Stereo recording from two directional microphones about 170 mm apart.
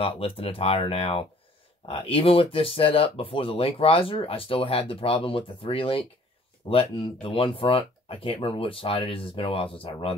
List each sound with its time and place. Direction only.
0.0 s speech: 35° left (ahead or behind)